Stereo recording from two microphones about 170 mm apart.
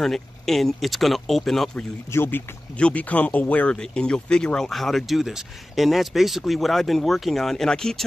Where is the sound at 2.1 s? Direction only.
15° left (ahead or behind).